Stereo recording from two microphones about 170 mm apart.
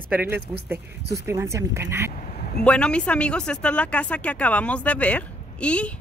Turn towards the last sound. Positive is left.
turn(degrees=5)  # may be behind; listen again after turning